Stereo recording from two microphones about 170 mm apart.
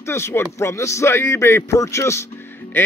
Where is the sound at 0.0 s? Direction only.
15° left (ahead or behind).